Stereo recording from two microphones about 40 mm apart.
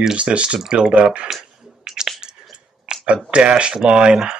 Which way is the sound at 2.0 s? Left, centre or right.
Centre.